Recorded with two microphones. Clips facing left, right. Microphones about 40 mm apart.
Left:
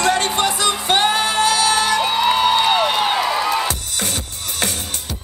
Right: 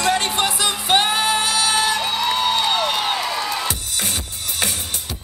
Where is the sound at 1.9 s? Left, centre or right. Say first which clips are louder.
Left 4 dB; centre.